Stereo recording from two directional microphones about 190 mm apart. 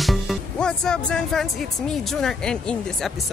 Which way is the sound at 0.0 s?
Centre (ahead or behind).